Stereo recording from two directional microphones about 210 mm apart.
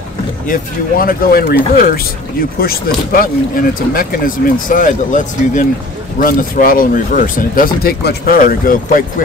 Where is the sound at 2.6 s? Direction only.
45° left (ahead or behind).